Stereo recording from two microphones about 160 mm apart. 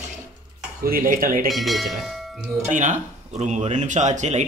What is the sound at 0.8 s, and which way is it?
Speech, 60° right (ahead or behind).